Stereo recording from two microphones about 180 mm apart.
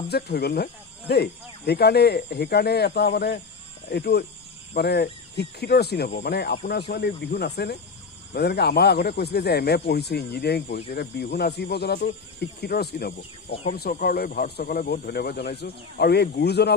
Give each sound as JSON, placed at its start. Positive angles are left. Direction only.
{"t": 0.1, "sound": "speech", "side_deg": 65}